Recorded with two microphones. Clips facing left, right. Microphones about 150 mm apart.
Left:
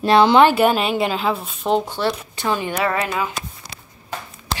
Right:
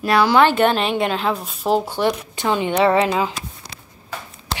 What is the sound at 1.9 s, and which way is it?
Speech, 15° right (ahead or behind).